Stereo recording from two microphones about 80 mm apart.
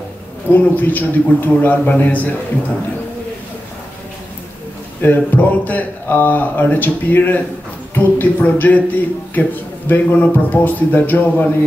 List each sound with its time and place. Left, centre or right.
0.5 s a man's voice: left
5.0 s a man's voice: left